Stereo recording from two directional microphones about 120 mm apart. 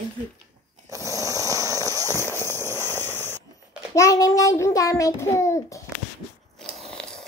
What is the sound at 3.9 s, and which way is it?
Child singing, 30° left (ahead or behind).